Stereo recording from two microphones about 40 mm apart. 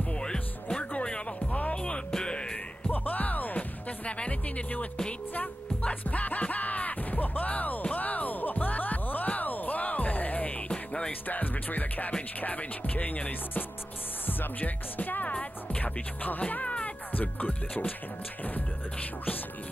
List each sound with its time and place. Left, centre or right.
0.2 s music: left
1.5 s music: left
1.8 s music: centre
2.9 s music: left
4.0 s music: left
10.7 s music: left
11.1 s music: left
14.2 s speech: left
15.8 s music: left
17.1 s music: left